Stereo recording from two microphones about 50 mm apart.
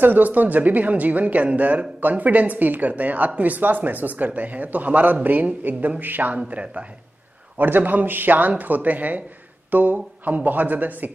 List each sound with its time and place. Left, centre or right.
0.0 s a woman's voice: right
7.5 s a woman's voice: right